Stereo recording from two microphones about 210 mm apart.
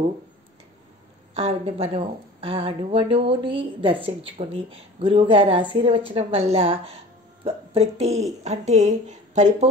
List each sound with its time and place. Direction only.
1.3 s a woman's voice: 30° right (ahead or behind)